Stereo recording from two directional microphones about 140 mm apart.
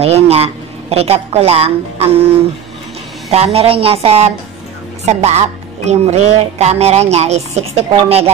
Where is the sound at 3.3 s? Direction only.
45° right (ahead or behind).